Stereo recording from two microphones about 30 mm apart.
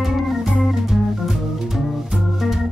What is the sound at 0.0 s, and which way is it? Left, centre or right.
Organ, centre.